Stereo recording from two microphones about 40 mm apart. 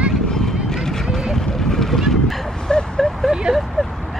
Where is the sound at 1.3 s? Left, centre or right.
Centre.